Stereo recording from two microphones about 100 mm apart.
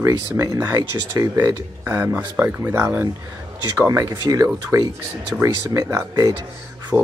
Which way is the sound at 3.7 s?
35° right (ahead or behind).